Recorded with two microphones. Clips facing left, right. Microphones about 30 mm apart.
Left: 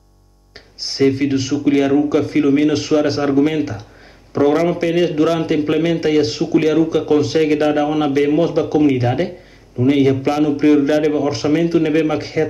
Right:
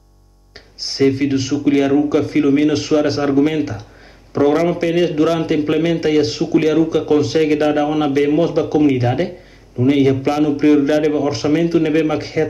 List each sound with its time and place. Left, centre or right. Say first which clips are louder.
0.7 s a man's voice: even; left